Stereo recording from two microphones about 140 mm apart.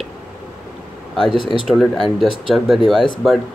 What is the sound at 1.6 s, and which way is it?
Speech, centre (ahead or behind).